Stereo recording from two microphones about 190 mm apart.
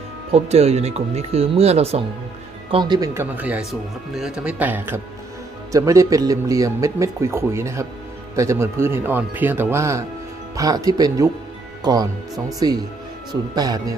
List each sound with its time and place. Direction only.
0.3 s speech: 35° right (ahead or behind)
2.7 s speech: 25° right (ahead or behind)
3.3 s a man's voice: 10° right (ahead or behind)